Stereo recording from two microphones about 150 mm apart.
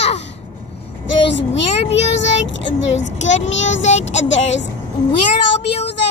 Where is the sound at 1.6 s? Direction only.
45° left (ahead or behind).